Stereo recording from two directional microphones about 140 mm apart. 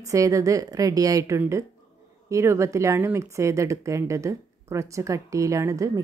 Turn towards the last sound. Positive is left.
turn(degrees=-25)  # may be behind; listen again after turning